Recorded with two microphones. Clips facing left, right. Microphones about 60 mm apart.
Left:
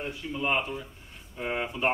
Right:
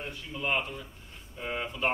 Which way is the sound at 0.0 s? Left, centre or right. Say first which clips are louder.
Left 4 dB; centre.